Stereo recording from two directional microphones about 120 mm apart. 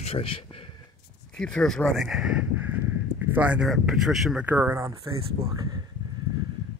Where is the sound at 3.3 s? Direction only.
10° right (ahead or behind).